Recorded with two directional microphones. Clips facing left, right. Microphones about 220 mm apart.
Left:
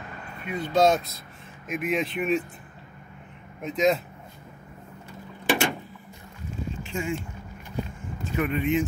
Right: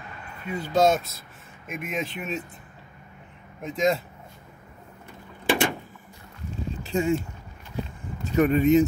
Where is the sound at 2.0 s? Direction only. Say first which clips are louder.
Left 3 dB; centre (ahead or behind).